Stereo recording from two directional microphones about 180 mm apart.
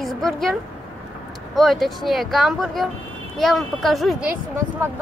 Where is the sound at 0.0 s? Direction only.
Centre (ahead or behind).